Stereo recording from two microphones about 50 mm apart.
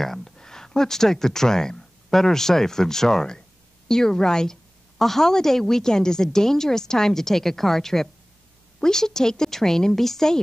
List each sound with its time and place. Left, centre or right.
0.0 s a woman's voice: centre